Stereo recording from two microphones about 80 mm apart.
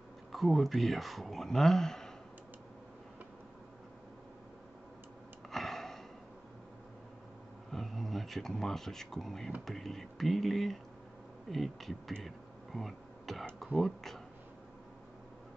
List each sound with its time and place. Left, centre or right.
0.3 s speech: centre
5.5 s a sound: centre
7.7 s speech: centre